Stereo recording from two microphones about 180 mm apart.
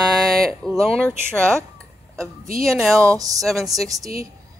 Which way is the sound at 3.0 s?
20° right (ahead or behind).